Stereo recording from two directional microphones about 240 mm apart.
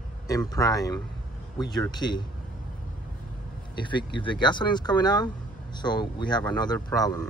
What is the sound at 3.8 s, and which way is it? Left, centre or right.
Speech, centre.